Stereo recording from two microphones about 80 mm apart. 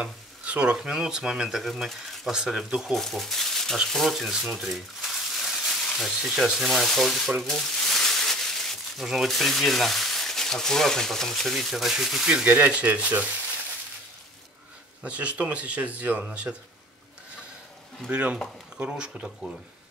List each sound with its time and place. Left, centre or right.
0.0 s speech: centre
3.0 s speech: centre
12.3 s speech: centre
15.0 s speech: centre
18.0 s speech: centre